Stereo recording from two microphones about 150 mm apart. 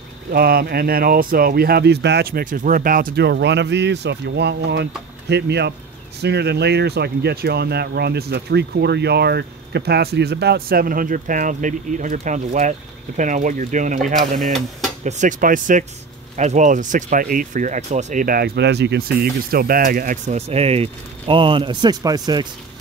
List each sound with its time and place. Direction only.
0.3 s speech: 80° right
5.3 s speech: 90° right; by 14.1 s 55° right (ahead or behind)
14.4 s speech: centre (ahead or behind)
15.0 s speech: 55° right (ahead or behind); by 20.2 s 70° right (ahead or behind)
20.2 s speech: 45° right (ahead or behind); by 22.5 s 25° right (ahead or behind)